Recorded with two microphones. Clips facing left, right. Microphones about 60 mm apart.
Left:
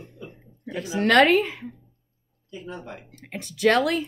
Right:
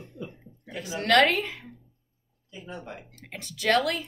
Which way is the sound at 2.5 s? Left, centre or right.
Centre.